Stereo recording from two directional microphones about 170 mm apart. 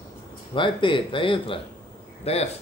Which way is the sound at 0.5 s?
30° left (ahead or behind).